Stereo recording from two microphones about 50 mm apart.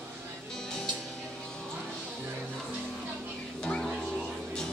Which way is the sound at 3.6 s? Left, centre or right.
Centre.